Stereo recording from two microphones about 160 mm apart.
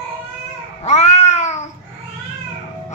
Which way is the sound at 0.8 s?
45° left (ahead or behind).